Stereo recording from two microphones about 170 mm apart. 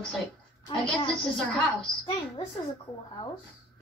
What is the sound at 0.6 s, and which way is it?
A woman's voice, 30° left (ahead or behind).